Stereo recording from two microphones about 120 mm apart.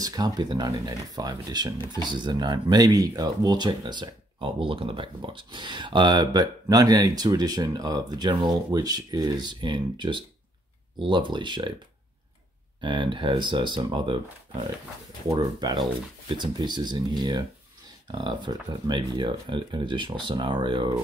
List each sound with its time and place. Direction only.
0.0 s speech: 30° right (ahead or behind)
12.8 s speech: 40° right (ahead or behind)